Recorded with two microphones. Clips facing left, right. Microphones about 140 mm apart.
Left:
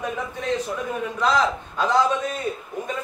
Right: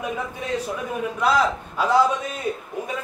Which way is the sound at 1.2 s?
10° right (ahead or behind).